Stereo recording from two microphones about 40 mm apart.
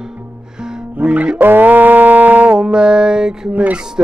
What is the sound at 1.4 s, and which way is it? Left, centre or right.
Music, right.